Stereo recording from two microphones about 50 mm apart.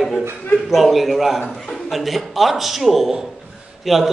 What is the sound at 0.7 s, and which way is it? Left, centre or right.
A man's voice, centre.